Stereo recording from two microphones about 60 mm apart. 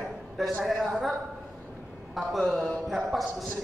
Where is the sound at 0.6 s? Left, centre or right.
Centre.